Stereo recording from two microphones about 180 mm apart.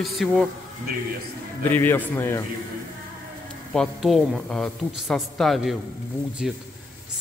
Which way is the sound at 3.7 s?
Centre (ahead or behind).